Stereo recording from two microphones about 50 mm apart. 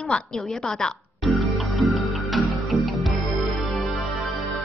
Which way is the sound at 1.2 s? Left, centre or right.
Centre.